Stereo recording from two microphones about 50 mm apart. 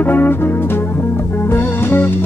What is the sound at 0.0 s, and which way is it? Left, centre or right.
Music, left.